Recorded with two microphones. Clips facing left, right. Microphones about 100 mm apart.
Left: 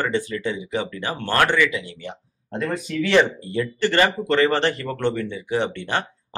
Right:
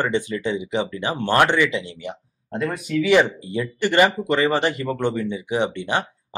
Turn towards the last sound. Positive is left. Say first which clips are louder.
# right 1 dB
turn(degrees=-15)  # may be behind; listen again after turning